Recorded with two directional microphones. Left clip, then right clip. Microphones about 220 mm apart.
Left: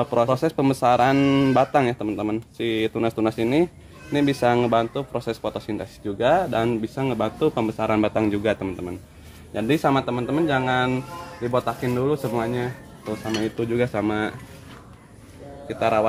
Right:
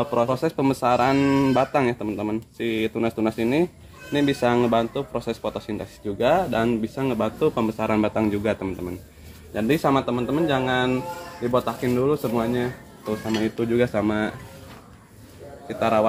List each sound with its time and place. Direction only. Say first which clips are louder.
0.0 s speech: left 2 dB; 40° left (ahead or behind)
13.4 s cutlery: right 1 dB; 15° left (ahead or behind)
15.7 s speech: even; 20° left (ahead or behind)